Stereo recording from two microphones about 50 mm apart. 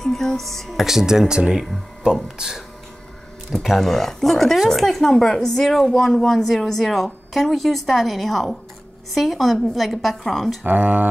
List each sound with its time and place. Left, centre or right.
0.0 s speech: centre
0.8 s speech: centre
3.7 s speech: centre
10.6 s speech: right